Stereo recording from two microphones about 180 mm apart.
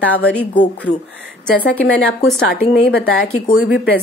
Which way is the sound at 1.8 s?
65° left (ahead or behind).